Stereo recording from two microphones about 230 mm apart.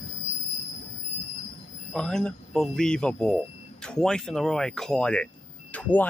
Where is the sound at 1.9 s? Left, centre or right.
Centre.